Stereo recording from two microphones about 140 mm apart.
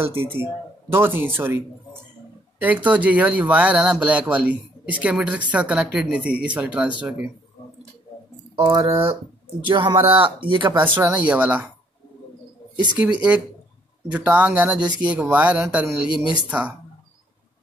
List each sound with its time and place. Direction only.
0.0 s speech: 15° right (ahead or behind)
2.6 s speech: 10° right (ahead or behind)
8.5 s speech: 40° right (ahead or behind)
11.0 s speech: 10° right (ahead or behind)
12.9 s speech: 10° right (ahead or behind)